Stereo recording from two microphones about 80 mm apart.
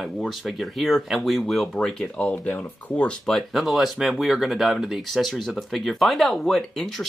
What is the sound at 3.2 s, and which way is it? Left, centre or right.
Speech, centre.